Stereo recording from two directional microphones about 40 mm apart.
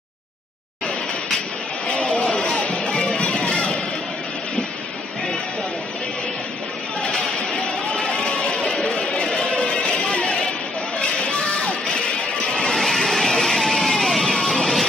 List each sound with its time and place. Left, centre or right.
1.9 s music: left
7.0 s a sound: left
12.7 s vehicle: centre